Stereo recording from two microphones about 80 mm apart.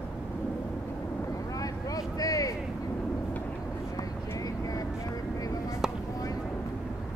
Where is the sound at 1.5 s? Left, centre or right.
Left.